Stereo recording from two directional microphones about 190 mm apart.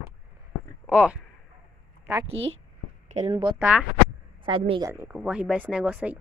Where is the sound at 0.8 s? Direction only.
5° right (ahead or behind).